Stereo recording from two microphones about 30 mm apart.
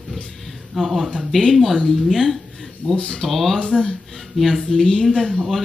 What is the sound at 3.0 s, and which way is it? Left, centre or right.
Speech, centre.